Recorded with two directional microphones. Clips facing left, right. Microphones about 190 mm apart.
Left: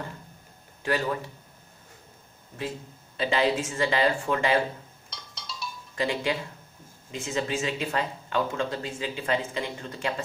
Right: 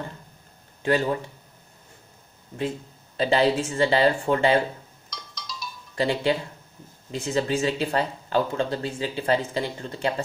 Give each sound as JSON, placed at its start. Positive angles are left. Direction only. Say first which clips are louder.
{"t": 0.8, "sound": "speech", "louder": "right 5 dB", "side_deg": -25}
{"t": 3.2, "sound": "speech", "louder": "right 4 dB", "side_deg": -35}
{"t": 5.1, "sound": "music", "louder": "right 3 dB", "side_deg": 30}
{"t": 5.9, "sound": "speech", "louder": "right 4 dB", "side_deg": -35}